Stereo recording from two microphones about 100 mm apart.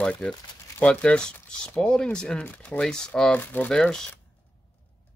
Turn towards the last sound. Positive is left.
turn(degrees=5)  # may be behind; listen again after turning